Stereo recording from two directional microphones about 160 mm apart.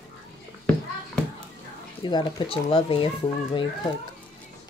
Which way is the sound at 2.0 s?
25° left (ahead or behind).